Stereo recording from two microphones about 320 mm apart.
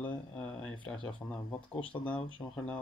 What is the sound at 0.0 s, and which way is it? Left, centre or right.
Speech, centre.